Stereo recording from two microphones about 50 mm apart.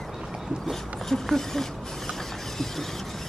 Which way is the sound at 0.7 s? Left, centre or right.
Centre.